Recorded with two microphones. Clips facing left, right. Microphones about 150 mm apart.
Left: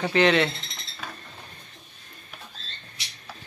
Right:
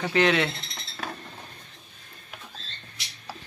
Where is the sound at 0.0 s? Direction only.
5° right (ahead or behind).